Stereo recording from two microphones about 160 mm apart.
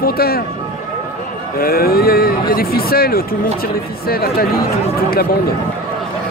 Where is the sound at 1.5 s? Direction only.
70° left (ahead or behind).